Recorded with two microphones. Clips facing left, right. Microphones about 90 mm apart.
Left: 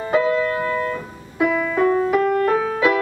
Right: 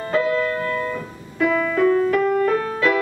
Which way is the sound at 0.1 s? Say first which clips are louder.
Left 2 dB; 10° left (ahead or behind).